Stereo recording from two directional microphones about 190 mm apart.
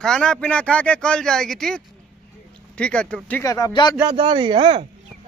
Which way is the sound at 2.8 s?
5° left (ahead or behind).